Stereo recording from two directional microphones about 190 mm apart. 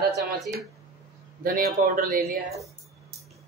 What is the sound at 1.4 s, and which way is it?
Speech, 45° right (ahead or behind).